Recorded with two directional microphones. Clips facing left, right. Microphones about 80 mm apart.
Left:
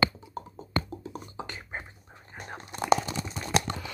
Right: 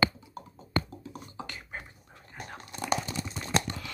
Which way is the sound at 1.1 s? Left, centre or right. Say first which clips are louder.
Left 3 dB; left.